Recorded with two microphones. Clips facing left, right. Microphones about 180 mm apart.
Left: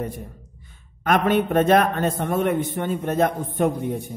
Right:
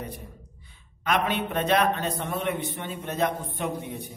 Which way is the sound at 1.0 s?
50° left (ahead or behind).